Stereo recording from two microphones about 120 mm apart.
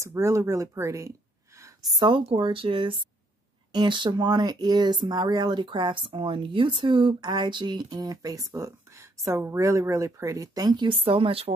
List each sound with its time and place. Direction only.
0.0 s speech: 25° right (ahead or behind)
10.9 s speech: 50° right (ahead or behind)